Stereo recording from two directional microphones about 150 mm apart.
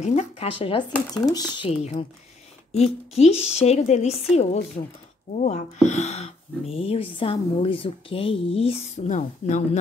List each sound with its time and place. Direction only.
0.0 s speech: 45° left (ahead or behind)
1.1 s speech: 25° left (ahead or behind)
1.7 s speech: 45° left (ahead or behind)